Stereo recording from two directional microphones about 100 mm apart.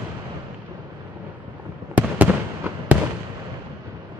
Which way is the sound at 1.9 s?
15° right (ahead or behind).